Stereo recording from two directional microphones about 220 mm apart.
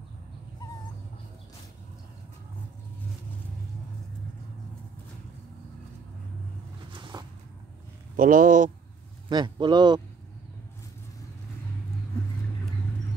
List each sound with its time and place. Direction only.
6.9 s a sound: 20° right (ahead or behind)
8.2 s speech: 40° right (ahead or behind)
9.3 s speech: 20° right (ahead or behind)